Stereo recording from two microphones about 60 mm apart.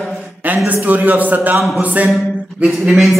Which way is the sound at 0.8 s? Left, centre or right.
Right.